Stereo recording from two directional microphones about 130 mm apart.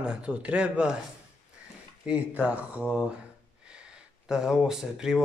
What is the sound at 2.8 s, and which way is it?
Speech, 10° left (ahead or behind).